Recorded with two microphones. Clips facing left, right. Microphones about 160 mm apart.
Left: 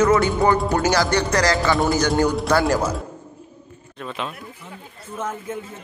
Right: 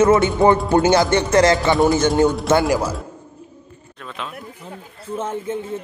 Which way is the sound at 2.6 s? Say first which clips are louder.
Right 1 dB; 5° right (ahead or behind).